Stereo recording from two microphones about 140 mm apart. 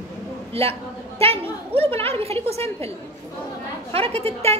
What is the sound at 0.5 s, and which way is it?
A woman's voice, 45° right (ahead or behind).